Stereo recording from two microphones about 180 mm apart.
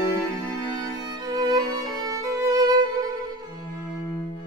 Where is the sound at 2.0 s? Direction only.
20° right (ahead or behind).